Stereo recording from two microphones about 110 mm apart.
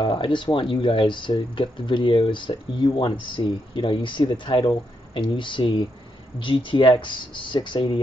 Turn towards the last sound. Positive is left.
turn(degrees=45)  # may be behind; listen again after turning